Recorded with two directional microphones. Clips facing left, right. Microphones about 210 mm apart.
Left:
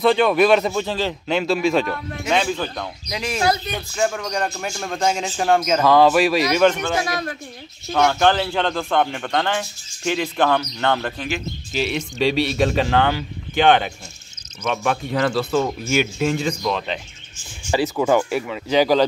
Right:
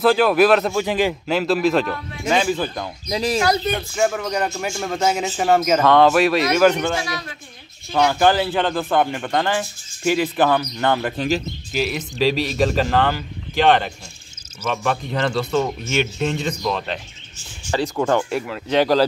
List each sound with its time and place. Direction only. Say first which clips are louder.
0.0 s speech: right 1 dB; 5° right (ahead or behind)
0.8 s a man's voice: right 4 dB; 15° right (ahead or behind)
1.2 s speech: right 1 dB; centre (ahead or behind)
3.1 s speech: right 2 dB; 35° right (ahead or behind)
3.9 s speech: even; 5° right (ahead or behind)
7.0 s a man's voice: left 4 dB; 50° left (ahead or behind)
7.9 s speech: right 1 dB; 5° right (ahead or behind)
11.1 s speech: right 6 dB; 35° right (ahead or behind)
11.7 s speech: even; centre (ahead or behind)